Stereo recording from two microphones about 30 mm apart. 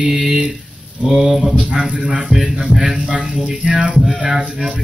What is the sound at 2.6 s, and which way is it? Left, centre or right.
Speech, right.